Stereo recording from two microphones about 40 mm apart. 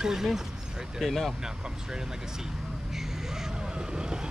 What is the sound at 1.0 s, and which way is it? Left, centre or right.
Speech, centre.